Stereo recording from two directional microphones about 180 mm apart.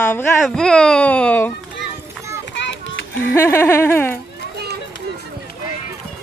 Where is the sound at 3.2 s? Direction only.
15° left (ahead or behind).